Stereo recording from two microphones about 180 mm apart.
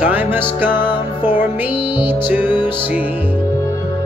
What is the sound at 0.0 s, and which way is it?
Music, 10° right (ahead or behind).